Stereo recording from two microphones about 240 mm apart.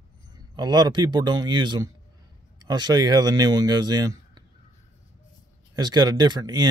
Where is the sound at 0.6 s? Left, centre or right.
Centre.